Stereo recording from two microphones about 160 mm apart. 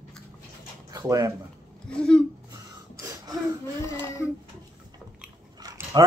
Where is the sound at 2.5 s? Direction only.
25° right (ahead or behind).